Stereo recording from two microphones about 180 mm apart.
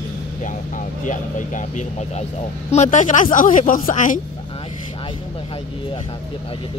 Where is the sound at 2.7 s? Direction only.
40° left (ahead or behind).